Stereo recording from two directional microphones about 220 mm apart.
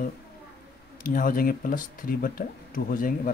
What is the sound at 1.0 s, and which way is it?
Speech, 40° left (ahead or behind).